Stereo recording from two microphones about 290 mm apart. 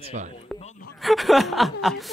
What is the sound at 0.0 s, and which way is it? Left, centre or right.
Speech, right.